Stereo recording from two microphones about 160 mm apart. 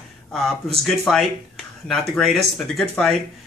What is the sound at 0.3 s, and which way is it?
Speech, centre (ahead or behind).